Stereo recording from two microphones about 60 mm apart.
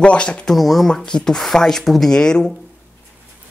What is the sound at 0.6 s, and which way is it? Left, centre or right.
Speech, centre.